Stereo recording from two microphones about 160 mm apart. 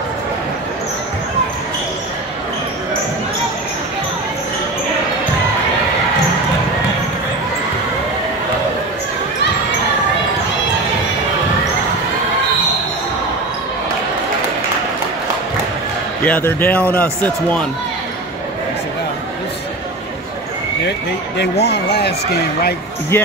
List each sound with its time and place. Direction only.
16.3 s speech: 10° left (ahead or behind)
21.4 s speech: 90° left
23.1 s speech: 15° left (ahead or behind)